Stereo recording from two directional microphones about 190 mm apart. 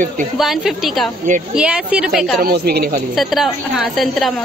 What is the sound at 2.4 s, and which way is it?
Speech, 55° right (ahead or behind).